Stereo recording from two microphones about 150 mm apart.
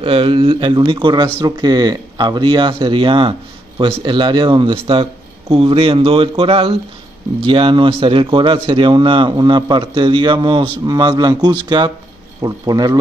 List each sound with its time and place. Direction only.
0.0 s a man's voice: 35° right (ahead or behind)